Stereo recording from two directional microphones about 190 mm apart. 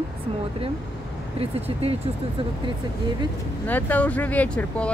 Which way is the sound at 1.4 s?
30° right (ahead or behind).